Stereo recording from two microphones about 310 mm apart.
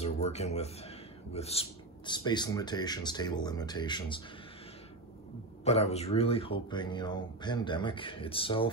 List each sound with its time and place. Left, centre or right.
0.0 s speech: left
5.6 s speech: centre